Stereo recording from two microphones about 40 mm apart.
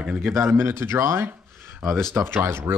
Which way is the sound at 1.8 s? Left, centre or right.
Centre.